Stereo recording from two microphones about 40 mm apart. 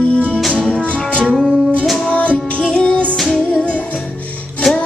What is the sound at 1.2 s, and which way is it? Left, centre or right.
Music, centre.